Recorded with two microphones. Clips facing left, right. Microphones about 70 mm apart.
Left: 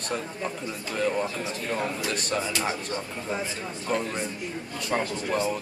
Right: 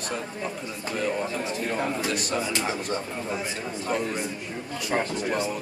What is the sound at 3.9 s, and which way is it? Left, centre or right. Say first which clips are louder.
Speech: even; centre.